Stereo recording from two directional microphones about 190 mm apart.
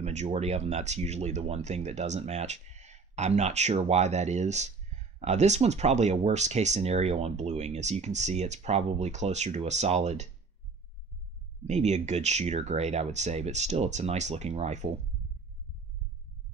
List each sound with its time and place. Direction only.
0.0 s speech: 35° right (ahead or behind)
11.6 s speech: 35° right (ahead or behind)